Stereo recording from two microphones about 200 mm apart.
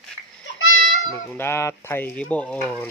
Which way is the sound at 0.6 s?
90° left.